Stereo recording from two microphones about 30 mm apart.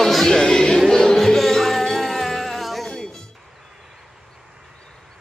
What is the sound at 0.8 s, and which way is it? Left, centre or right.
Music, centre.